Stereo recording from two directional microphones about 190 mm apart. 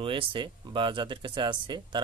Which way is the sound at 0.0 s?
25° right (ahead or behind).